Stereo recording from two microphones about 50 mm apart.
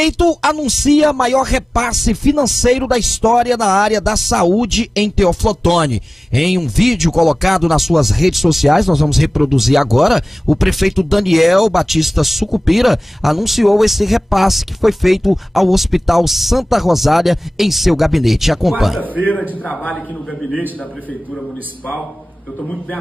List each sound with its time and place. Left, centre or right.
0.0 s speech: centre
22.6 s a man's voice: left